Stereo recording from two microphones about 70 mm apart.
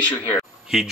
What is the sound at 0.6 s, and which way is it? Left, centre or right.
Speech, centre.